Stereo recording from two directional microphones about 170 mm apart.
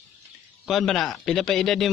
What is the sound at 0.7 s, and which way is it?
A man's voice, centre (ahead or behind).